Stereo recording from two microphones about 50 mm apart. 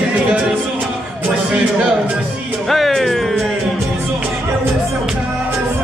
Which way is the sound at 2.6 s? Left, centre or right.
Centre.